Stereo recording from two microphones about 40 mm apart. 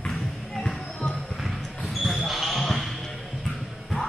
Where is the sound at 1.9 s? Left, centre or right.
Centre.